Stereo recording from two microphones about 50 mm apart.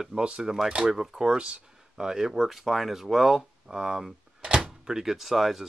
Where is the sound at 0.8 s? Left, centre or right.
Centre.